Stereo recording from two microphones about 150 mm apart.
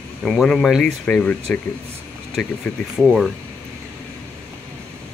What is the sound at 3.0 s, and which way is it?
Speech, 5° right (ahead or behind).